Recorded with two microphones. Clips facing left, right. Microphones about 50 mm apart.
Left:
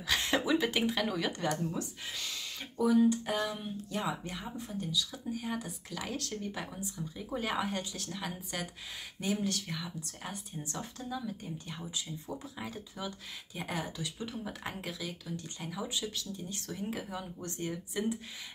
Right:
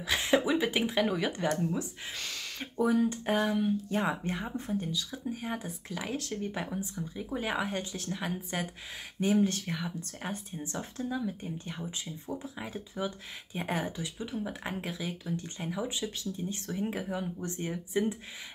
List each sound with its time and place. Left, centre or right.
0.0 s speech: centre
2.1 s a sound: right
2.6 s speech: right
14.1 s speech: centre